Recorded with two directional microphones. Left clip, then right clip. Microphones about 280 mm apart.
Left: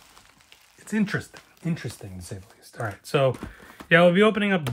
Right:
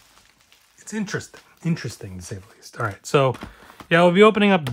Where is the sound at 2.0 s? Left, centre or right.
Right.